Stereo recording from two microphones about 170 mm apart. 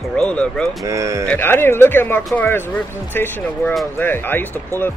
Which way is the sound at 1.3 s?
10° left (ahead or behind).